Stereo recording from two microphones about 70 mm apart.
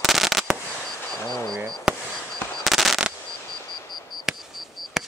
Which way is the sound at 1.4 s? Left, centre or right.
Right.